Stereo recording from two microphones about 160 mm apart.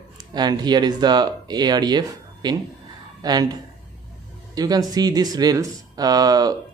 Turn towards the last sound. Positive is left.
turn(degrees=-25)  # may be behind; listen again after turning